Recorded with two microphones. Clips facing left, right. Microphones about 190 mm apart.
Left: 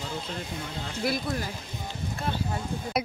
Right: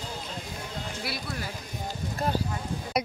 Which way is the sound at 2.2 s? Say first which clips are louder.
Right 4 dB; 40° right (ahead or behind).